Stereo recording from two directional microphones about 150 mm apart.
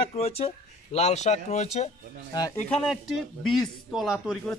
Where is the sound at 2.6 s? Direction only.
Centre (ahead or behind).